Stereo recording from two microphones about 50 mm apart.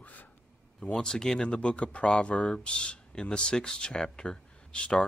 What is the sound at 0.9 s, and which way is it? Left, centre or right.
Speech, centre.